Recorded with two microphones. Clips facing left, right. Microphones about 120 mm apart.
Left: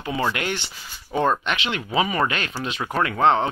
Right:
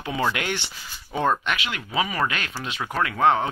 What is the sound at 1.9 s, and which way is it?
Speech, centre (ahead or behind).